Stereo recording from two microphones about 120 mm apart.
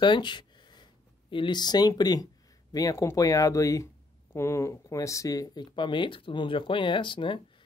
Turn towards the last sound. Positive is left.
turn(degrees=45)  # may be behind; listen again after turning